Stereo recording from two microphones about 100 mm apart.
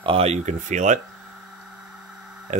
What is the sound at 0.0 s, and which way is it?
Speech, 80° right.